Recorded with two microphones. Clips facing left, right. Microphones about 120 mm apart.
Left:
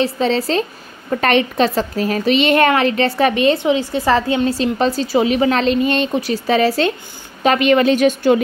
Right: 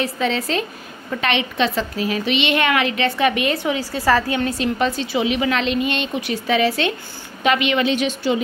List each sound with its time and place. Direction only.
0.0 s a woman's voice: 30° left (ahead or behind); by 8.4 s 50° left (ahead or behind)